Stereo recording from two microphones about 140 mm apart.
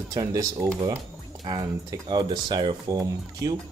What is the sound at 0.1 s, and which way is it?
Speech, 25° right (ahead or behind).